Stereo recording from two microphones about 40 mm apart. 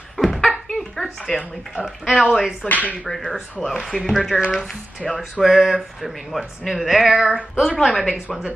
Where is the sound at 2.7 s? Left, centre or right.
Left.